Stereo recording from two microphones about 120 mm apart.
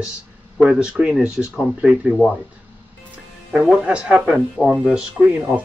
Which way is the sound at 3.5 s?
5° right (ahead or behind).